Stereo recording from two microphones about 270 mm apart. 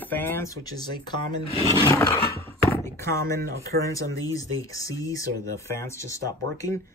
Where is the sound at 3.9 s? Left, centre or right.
Centre.